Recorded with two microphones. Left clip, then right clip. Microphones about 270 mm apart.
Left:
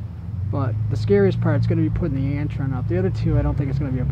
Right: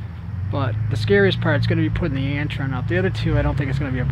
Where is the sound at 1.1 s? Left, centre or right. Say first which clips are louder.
Right 2 dB; centre.